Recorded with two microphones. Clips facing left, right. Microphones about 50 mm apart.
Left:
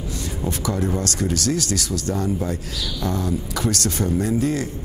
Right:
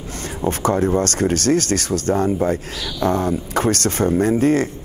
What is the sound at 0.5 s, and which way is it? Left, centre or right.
Speech, right.